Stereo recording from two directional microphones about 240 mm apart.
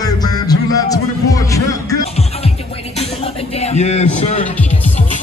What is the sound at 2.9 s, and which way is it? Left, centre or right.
Music, left.